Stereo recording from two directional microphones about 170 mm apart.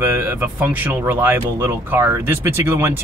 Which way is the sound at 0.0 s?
10° right (ahead or behind).